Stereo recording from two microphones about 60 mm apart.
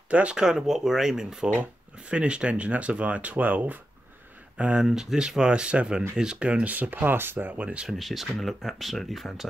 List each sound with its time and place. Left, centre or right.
0.1 s speech: centre
4.8 s speech: centre
8.0 s speech: centre